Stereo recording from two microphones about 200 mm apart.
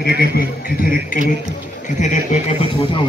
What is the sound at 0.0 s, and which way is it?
Speech, 50° left (ahead or behind).